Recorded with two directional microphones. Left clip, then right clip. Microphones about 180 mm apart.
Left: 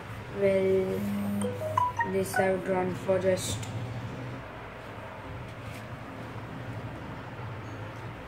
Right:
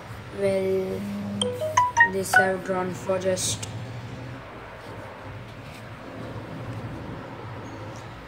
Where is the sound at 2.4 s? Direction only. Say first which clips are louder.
Right 3 dB; 25° right (ahead or behind).